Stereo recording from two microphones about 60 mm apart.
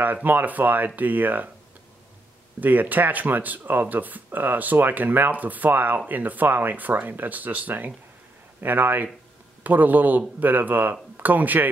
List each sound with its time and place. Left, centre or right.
0.0 s speech: right
2.6 s speech: right